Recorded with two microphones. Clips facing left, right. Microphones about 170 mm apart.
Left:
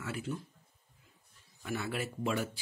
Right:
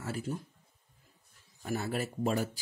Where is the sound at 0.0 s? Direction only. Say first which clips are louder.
Right 2 dB; 40° right (ahead or behind).